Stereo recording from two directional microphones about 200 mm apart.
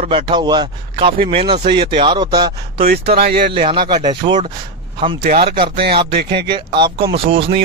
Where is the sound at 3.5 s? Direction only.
25° right (ahead or behind).